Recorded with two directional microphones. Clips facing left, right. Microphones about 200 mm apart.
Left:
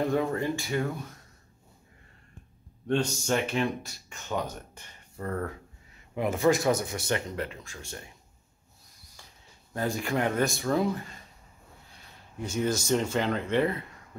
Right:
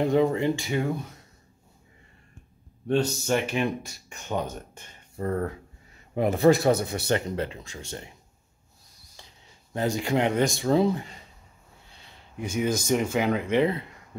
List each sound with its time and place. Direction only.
0.0 s speech: 20° right (ahead or behind)
2.9 s a man's voice: 5° right (ahead or behind); by 7.8 s 25° right (ahead or behind)
9.2 s a sound: 25° right (ahead or behind)
9.8 s speech: 20° right (ahead or behind)
12.4 s speech: 15° right (ahead or behind)